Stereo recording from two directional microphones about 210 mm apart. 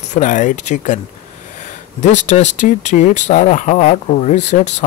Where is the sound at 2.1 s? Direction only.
35° left (ahead or behind).